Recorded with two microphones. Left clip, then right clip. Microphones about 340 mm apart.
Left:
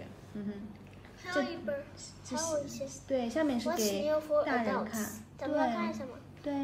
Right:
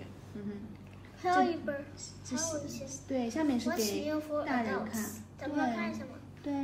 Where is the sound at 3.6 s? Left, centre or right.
Centre.